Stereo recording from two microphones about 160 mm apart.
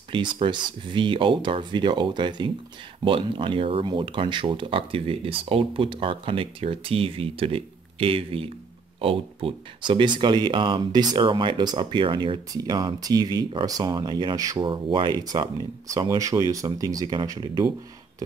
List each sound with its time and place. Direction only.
0.1 s speech: 30° right (ahead or behind)